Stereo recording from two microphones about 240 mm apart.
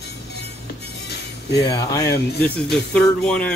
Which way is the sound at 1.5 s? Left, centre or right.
Centre.